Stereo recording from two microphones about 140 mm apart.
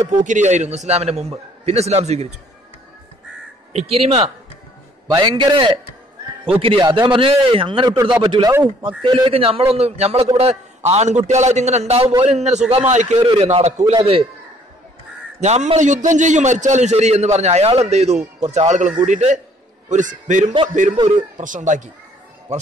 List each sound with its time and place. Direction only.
0.1 s a man's voice: 60° right (ahead or behind)
3.7 s a man's voice: 45° right (ahead or behind)
5.0 s a man's voice: 30° right (ahead or behind)
6.8 s a man's voice: 30° right (ahead or behind)
15.4 s a man's voice: 50° right (ahead or behind)